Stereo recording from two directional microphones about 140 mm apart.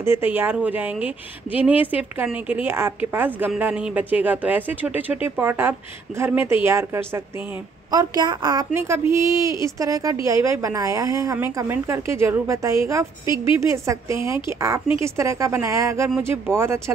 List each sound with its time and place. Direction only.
0.0 s speech: 15° right (ahead or behind)
7.9 s a woman's voice: 30° right (ahead or behind)
8.7 s a woman's voice: 20° right (ahead or behind)